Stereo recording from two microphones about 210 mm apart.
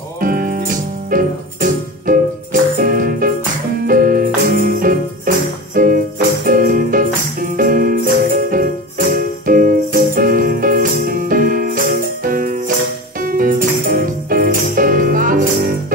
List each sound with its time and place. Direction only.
0.2 s music: 40° right (ahead or behind)
6.4 s music: 40° right (ahead or behind)
7.5 s jingle bell: 40° right (ahead or behind)
13.2 s music: 40° right (ahead or behind)